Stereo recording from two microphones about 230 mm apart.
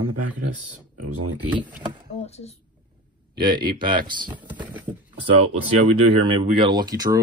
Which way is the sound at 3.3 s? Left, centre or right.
Centre.